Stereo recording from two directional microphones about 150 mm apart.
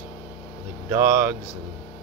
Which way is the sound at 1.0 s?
15° right (ahead or behind).